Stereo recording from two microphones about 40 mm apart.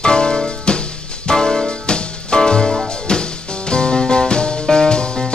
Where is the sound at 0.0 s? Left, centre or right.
Left.